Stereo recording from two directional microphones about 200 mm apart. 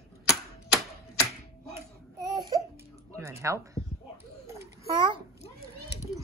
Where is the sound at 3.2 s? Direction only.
15° right (ahead or behind).